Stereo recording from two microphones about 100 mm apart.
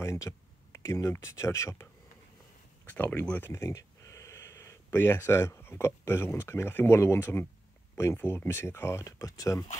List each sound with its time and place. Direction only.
0.0 s speech: 30° left (ahead or behind)
2.9 s speech: 15° left (ahead or behind)
3.4 s speech: 25° left (ahead or behind)